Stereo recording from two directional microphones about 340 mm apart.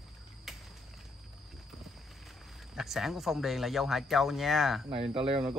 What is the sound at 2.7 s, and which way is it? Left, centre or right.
A man's voice, centre.